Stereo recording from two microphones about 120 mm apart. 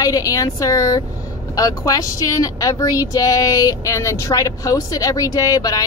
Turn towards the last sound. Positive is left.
turn(degrees=30)  # may be behind; listen again after turning